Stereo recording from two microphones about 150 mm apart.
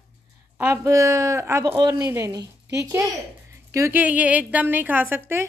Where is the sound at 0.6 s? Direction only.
20° right (ahead or behind).